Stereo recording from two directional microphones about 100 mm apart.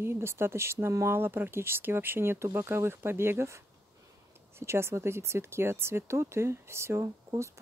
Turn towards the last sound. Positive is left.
turn(degrees=-30)  # may be behind; listen again after turning